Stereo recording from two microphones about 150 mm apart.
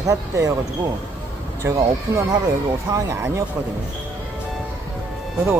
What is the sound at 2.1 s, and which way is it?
Speech, 20° right (ahead or behind).